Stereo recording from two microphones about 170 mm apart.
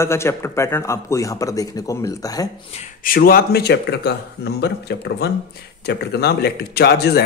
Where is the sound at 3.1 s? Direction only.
60° left (ahead or behind).